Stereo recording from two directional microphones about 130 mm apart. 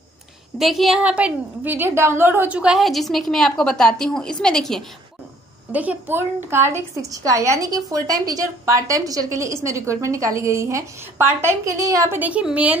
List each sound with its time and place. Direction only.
0.6 s a woman's voice: centre (ahead or behind)
5.7 s a woman's voice: 10° right (ahead or behind)